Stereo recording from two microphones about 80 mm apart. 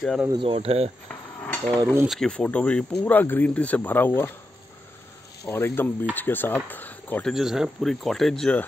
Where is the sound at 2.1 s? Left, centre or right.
Centre; by 4.3 s left.